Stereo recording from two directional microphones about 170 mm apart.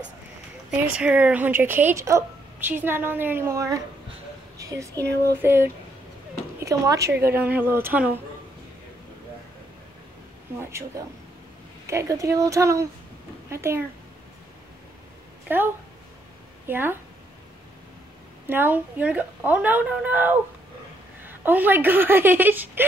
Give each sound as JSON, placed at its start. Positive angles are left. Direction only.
{"t": 0.7, "sound": "a woman's voice", "side_deg": -5}
{"t": 5.0, "sound": "a sound", "side_deg": -75}
{"t": 5.4, "sound": "speech", "side_deg": -15}
{"t": 10.6, "sound": "speech", "side_deg": -15}
{"t": 15.4, "sound": "speech", "side_deg": -10}
{"t": 18.5, "sound": "speech", "side_deg": -10}
{"t": 21.5, "sound": "speech", "side_deg": -10}